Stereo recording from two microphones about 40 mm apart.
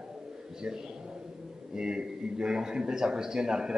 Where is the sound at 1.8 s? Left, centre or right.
Centre.